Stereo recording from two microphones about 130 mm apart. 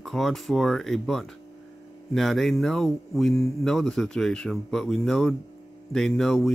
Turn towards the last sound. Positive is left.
turn(degrees=0)  # may be behind; listen again after turning